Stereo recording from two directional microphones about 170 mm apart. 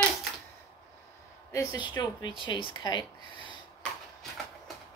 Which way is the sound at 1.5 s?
20° left (ahead or behind).